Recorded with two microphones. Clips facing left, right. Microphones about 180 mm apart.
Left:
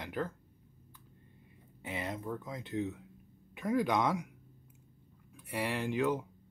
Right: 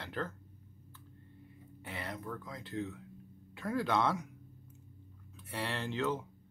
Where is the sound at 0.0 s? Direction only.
10° left (ahead or behind).